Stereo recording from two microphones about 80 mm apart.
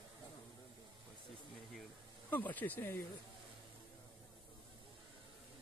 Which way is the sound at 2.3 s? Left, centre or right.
Left.